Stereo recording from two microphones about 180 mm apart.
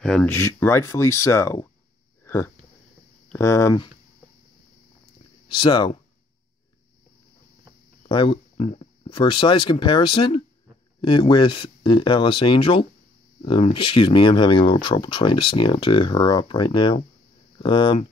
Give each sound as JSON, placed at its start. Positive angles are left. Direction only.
{"t": 0.0, "sound": "speech", "side_deg": 5}
{"t": 2.2, "sound": "a sound", "side_deg": 15}
{"t": 3.3, "sound": "speech", "side_deg": 15}
{"t": 5.5, "sound": "speech", "side_deg": 25}
{"t": 8.1, "sound": "speech", "side_deg": 30}